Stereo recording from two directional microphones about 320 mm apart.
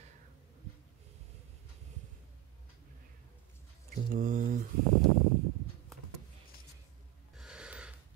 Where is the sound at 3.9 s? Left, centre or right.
Right.